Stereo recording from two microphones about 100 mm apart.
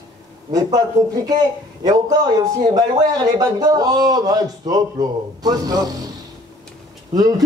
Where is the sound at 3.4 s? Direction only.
40° right (ahead or behind).